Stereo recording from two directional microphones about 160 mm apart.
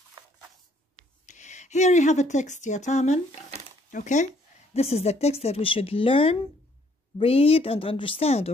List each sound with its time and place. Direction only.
1.2 s speech: 50° left (ahead or behind)